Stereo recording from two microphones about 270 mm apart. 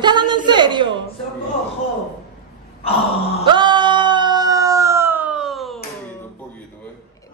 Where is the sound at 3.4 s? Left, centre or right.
Centre.